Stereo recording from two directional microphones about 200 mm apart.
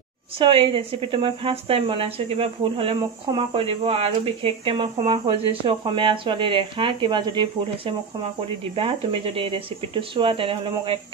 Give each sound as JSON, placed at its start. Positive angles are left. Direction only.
{"t": 0.4, "sound": "a woman's voice", "side_deg": -25}